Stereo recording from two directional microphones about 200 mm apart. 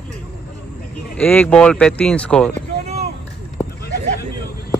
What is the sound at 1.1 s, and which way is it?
Speech, 10° left (ahead or behind).